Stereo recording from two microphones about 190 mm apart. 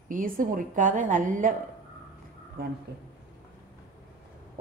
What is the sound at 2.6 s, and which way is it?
Speech, 50° right (ahead or behind).